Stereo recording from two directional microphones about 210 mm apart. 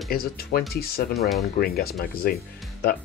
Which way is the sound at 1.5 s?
45° left (ahead or behind).